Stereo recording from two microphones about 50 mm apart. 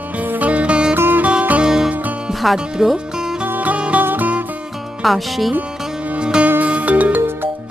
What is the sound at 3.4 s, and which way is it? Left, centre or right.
Music, right.